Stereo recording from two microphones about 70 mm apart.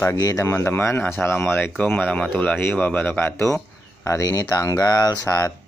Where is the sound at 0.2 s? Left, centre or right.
Left.